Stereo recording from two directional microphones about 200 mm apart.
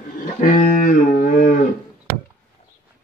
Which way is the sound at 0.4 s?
40° left (ahead or behind).